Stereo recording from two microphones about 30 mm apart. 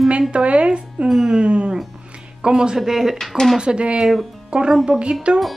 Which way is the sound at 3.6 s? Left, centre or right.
Right.